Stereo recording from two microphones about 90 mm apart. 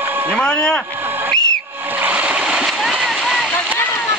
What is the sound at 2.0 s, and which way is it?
Splash, 15° right (ahead or behind).